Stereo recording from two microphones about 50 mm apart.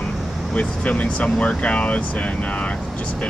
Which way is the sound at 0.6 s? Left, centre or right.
Left.